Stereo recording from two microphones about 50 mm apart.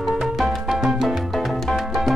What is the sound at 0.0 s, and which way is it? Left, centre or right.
Music, centre.